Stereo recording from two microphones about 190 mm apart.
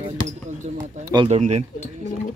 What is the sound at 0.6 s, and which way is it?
Speech, 40° right (ahead or behind).